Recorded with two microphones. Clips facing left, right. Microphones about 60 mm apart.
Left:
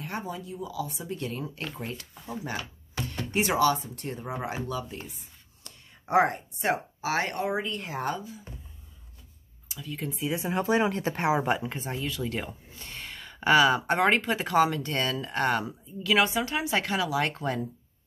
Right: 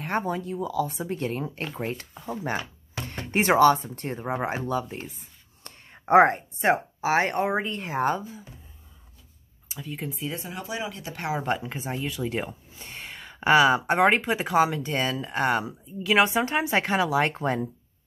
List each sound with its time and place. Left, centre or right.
0.0 s speech: right
10.1 s speech: centre
10.5 s speech: left
11.1 s speech: left
11.4 s speech: centre
11.8 s speech: centre